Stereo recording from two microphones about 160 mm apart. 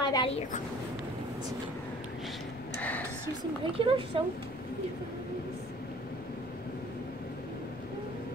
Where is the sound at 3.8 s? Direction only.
35° right (ahead or behind).